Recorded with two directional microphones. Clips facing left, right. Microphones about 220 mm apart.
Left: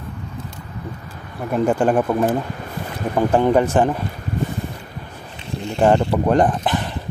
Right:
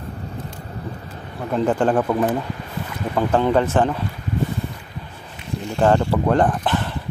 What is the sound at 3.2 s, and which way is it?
Speech, 15° left (ahead or behind).